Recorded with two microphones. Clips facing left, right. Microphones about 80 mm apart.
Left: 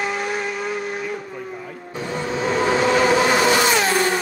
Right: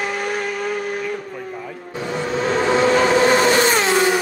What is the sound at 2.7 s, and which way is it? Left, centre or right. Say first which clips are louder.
Vehicle: right 2 dB; right.